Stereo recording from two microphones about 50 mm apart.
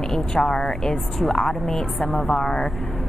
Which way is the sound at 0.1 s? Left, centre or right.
Centre.